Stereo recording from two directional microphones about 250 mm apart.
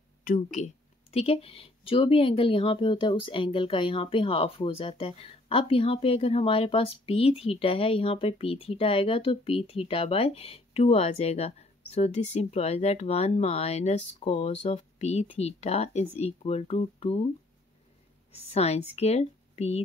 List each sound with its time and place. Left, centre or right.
1.1 s speech: left
18.3 s speech: left